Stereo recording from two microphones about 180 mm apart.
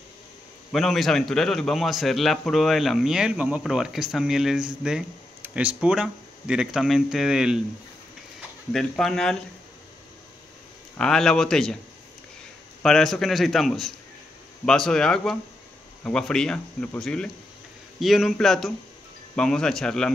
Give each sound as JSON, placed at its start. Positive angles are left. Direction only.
{"t": 0.7, "sound": "a man's voice", "side_deg": 0}
{"t": 8.7, "sound": "a man's voice", "side_deg": 0}
{"t": 11.0, "sound": "a man's voice", "side_deg": 5}
{"t": 12.8, "sound": "a man's voice", "side_deg": 0}